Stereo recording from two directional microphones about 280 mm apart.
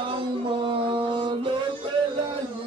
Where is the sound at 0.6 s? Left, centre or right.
Centre.